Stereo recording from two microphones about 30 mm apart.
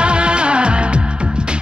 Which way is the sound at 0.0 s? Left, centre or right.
Right.